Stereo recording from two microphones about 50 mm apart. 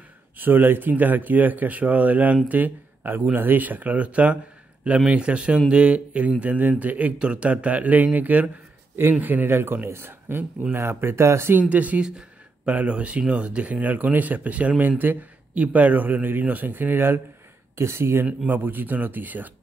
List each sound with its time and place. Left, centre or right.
0.4 s a man's voice: right
11.7 s speech: right
17.7 s speech: right
18.5 s speech: right